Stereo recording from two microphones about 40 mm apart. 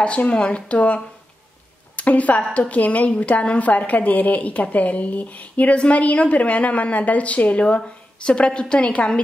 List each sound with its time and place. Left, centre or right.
0.0 s a woman's voice: left